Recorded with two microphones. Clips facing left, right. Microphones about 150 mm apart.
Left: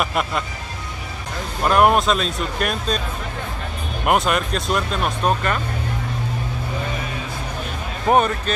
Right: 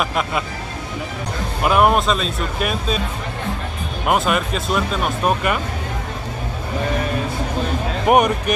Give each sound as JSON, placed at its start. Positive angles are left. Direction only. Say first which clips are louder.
{"t": 0.0, "sound": "speech", "louder": "right 1 dB", "side_deg": 0}
{"t": 1.6, "sound": "speech", "louder": "even", "side_deg": -5}
{"t": 4.0, "sound": "speech", "louder": "even", "side_deg": 0}
{"t": 8.1, "sound": "speech", "louder": "right 2 dB", "side_deg": -15}